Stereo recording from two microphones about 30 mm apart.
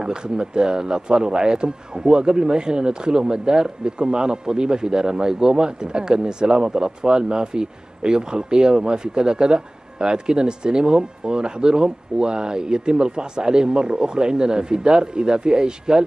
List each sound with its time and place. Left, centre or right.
0.0 s speech: right